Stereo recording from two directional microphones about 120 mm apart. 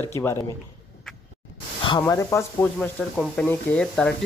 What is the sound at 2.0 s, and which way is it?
Speech, 20° left (ahead or behind).